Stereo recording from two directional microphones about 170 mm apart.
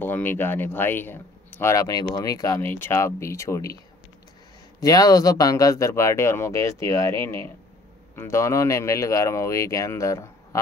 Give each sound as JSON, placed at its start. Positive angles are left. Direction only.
{"t": 0.0, "sound": "speech", "side_deg": 10}
{"t": 4.8, "sound": "speech", "side_deg": 20}